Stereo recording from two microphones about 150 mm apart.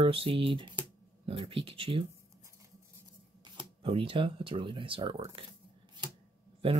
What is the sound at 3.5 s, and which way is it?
Speech, 40° right (ahead or behind).